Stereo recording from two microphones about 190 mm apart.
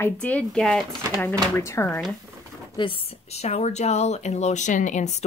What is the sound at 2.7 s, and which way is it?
Speech, 30° left (ahead or behind).